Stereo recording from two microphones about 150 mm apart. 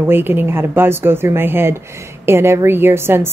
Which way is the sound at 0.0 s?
15° right (ahead or behind).